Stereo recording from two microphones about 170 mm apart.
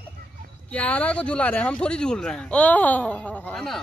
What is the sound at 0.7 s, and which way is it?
Speech, 10° left (ahead or behind).